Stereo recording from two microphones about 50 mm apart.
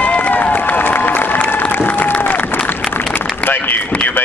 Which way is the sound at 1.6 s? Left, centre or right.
Left.